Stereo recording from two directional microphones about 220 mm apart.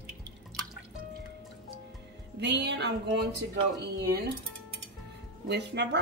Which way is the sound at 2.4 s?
50° right (ahead or behind).